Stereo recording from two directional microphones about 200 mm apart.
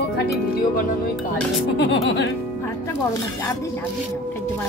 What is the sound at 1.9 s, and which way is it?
Music, 60° left (ahead or behind).